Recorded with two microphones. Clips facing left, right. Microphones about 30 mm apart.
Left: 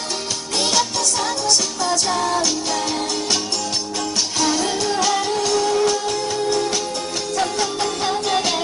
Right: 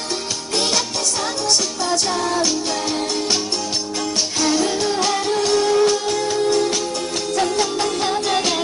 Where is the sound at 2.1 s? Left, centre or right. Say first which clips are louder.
Even; centre.